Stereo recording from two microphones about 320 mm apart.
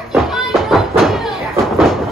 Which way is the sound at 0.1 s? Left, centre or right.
Centre.